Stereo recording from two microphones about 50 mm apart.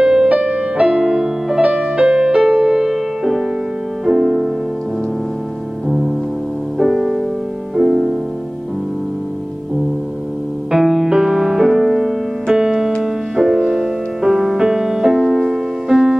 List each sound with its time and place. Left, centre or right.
0.0 s music: centre
0.8 s music: centre
5.9 s music: centre
10.7 s music: centre